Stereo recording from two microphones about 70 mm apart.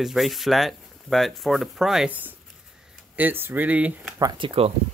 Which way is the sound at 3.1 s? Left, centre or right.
Right.